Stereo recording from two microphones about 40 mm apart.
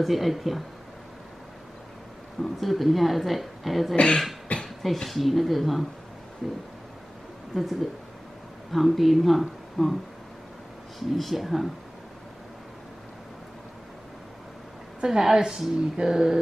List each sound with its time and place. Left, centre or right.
0.0 s speech: centre
2.4 s speech: centre
3.9 s speech: left
4.6 s speech: centre
11.0 s speech: centre
15.0 s speech: centre